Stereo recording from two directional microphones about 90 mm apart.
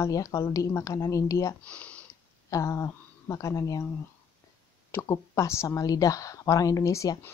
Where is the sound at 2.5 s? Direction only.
40° left (ahead or behind).